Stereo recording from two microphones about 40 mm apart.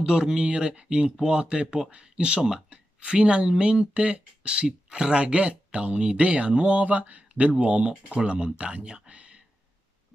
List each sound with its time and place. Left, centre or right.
0.0 s speech: centre; by 9.4 s right